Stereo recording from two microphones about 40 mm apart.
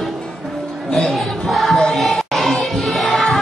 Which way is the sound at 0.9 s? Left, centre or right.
Centre.